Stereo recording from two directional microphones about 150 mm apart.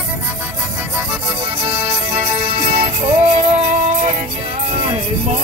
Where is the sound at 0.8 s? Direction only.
15° right (ahead or behind).